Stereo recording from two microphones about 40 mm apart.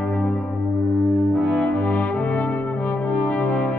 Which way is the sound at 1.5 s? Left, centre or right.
Left.